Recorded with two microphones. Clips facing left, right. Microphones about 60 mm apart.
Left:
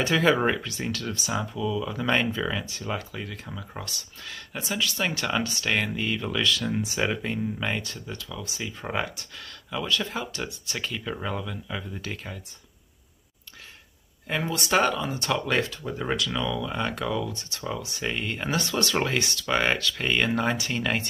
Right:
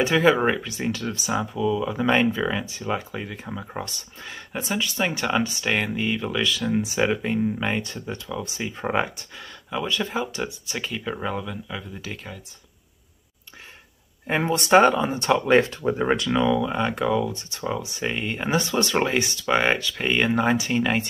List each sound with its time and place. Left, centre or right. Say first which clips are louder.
0.0 s speech: right 3 dB; centre
7.8 s speech: right 4 dB; right; by 12.4 s centre
14.2 s speech: right 5 dB; right; by 21.0 s centre